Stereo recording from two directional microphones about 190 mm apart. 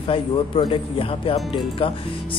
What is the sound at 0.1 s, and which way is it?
Speech, 30° left (ahead or behind).